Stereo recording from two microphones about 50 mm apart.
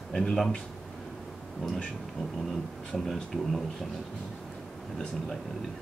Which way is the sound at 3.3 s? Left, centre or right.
Centre.